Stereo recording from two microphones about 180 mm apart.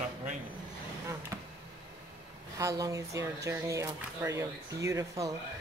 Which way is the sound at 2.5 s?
20° right (ahead or behind).